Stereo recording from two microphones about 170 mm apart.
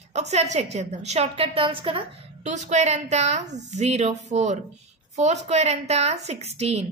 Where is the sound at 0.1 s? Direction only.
40° right (ahead or behind).